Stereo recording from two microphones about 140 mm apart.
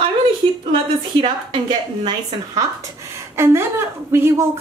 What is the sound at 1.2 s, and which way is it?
Speech, 30° right (ahead or behind).